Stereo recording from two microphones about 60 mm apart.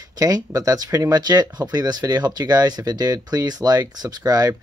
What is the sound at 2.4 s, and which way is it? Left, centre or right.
Speech, right.